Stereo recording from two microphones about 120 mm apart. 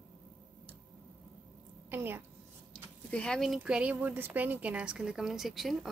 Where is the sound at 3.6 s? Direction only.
10° right (ahead or behind).